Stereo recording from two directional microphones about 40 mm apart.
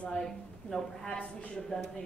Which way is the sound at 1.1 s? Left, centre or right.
Left.